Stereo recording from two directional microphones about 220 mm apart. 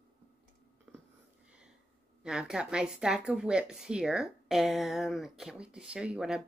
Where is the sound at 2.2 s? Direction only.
5° right (ahead or behind).